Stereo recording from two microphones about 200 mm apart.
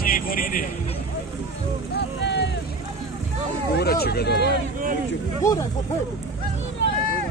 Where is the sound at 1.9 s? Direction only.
60° left (ahead or behind).